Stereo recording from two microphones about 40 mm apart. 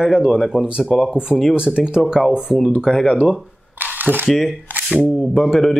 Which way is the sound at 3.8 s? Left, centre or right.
Right.